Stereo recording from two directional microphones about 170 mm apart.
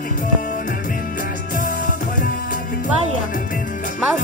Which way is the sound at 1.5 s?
50° left (ahead or behind).